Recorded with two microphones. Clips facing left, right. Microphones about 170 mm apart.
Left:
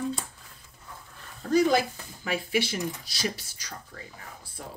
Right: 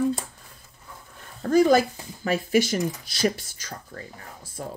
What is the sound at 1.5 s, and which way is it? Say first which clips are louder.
Speech: right 4 dB; 45° right (ahead or behind).